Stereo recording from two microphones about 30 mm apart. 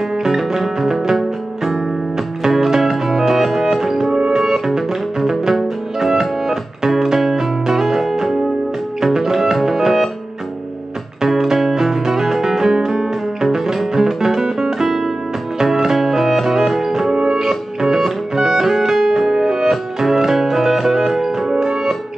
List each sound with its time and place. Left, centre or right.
0.1 s music: centre
6.1 s music: centre
11.2 s music: centre